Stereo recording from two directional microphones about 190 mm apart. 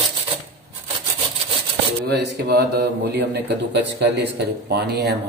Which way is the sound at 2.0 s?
60° right (ahead or behind).